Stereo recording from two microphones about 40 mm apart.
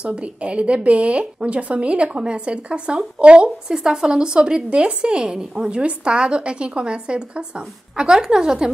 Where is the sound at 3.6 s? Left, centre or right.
Centre.